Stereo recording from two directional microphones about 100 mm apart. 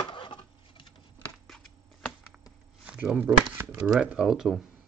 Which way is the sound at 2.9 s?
10° right (ahead or behind).